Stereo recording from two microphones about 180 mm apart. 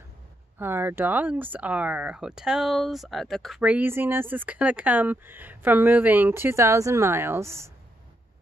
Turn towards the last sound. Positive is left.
turn(degrees=-15)  # may be behind; listen again after turning